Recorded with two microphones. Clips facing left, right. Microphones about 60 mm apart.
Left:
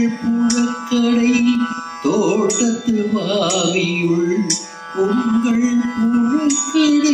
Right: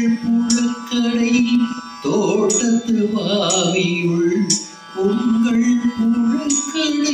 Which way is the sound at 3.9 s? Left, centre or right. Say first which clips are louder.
Left 1 dB; centre.